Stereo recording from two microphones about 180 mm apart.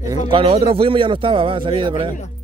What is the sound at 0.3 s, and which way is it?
A man's voice, 30° right (ahead or behind).